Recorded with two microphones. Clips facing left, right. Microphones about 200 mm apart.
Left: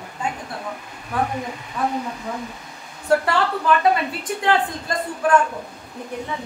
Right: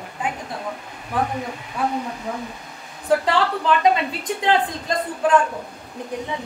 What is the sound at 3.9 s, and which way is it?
A woman's voice, 20° right (ahead or behind).